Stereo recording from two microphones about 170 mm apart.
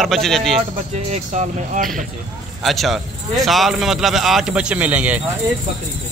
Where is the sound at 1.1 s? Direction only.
45° right (ahead or behind).